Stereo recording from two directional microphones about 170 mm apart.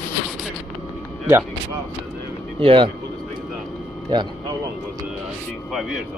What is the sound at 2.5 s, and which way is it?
Speech, 30° right (ahead or behind).